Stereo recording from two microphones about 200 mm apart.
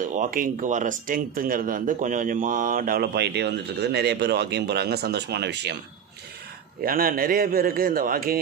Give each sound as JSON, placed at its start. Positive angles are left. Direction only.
{"t": 0.0, "sound": "speech", "side_deg": -40}
{"t": 6.8, "sound": "speech", "side_deg": -45}